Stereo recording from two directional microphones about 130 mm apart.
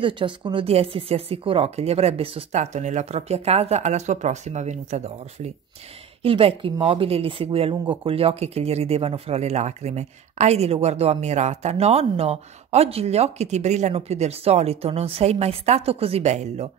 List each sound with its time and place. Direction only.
0.0 s speech: 40° right (ahead or behind); by 5.5 s 60° right (ahead or behind)
6.2 s speech: 45° right (ahead or behind)